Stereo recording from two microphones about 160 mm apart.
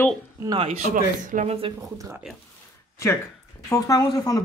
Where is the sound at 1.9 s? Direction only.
20° right (ahead or behind).